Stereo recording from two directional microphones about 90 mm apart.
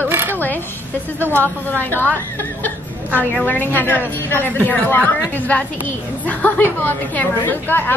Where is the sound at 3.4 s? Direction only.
20° left (ahead or behind).